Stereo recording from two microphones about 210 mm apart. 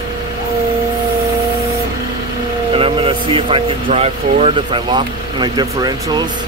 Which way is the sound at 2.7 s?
25° right (ahead or behind).